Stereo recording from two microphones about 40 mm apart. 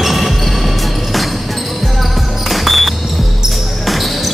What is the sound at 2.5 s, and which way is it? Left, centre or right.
Music, centre.